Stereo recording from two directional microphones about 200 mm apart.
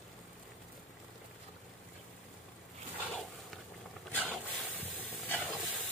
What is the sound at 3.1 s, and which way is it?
Dog, centre (ahead or behind).